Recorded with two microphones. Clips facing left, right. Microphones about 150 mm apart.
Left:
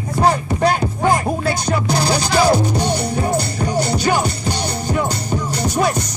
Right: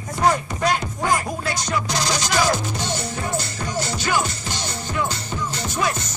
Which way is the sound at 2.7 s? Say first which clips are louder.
Left 8 dB; 10° left (ahead or behind).